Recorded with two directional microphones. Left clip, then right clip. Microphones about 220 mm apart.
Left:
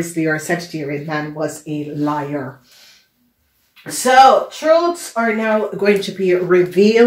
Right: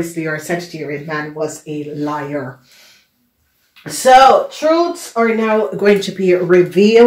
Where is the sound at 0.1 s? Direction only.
45° left (ahead or behind).